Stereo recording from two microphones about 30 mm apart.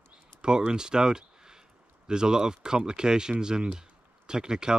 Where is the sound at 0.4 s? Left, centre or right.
Right.